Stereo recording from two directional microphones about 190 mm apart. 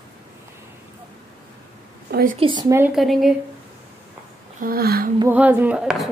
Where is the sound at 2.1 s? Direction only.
55° right (ahead or behind).